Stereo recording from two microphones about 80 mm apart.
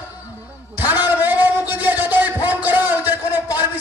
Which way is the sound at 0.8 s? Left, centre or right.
Right.